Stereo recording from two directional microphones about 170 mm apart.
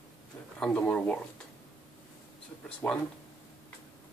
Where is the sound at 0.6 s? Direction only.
5° left (ahead or behind).